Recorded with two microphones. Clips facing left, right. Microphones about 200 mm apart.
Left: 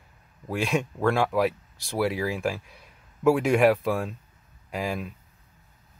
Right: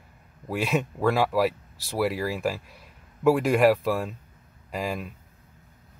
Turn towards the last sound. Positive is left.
turn(degrees=0)  # may be behind; listen again after turning